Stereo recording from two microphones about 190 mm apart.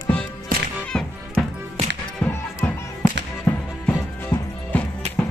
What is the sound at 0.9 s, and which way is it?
Music, 5° left (ahead or behind).